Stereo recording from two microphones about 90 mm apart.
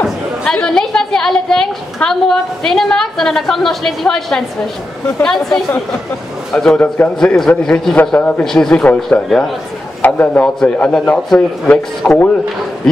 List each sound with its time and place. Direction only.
0.0 s chatter: centre (ahead or behind)
0.6 s a woman's voice: 5° left (ahead or behind)
7.3 s a woman's voice: 5° left (ahead or behind)
7.9 s speech: 15° left (ahead or behind)
8.5 s speech: 10° left (ahead or behind)